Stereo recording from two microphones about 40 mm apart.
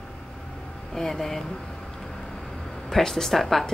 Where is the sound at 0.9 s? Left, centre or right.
Centre.